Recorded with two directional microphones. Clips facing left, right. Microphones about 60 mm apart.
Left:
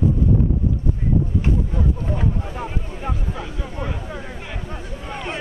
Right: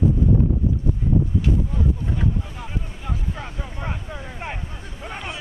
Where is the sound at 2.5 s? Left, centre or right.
Left.